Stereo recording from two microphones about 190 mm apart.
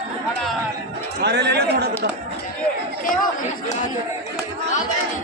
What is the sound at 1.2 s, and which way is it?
Chatter, 60° right (ahead or behind).